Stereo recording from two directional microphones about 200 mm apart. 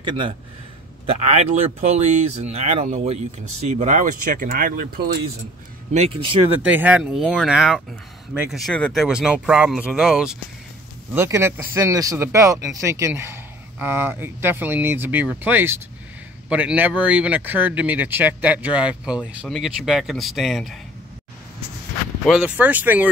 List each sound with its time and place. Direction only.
0.0 s speech: 25° right (ahead or behind); by 5.1 s 45° right (ahead or behind)
5.9 s speech: 30° right (ahead or behind)
6.6 s speech: 10° right (ahead or behind)
11.1 s speech: 15° right (ahead or behind)
22.2 s speech: 5° right (ahead or behind)